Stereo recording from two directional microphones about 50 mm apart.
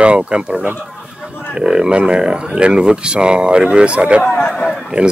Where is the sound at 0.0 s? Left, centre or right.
Right.